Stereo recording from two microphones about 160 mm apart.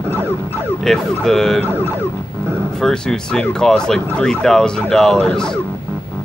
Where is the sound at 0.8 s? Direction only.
Centre (ahead or behind).